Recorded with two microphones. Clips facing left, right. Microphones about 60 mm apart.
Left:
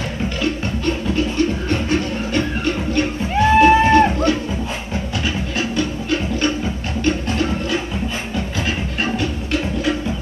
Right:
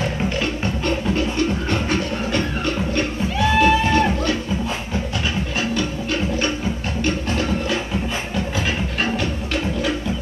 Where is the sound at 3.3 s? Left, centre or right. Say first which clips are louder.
Left 5 dB; left.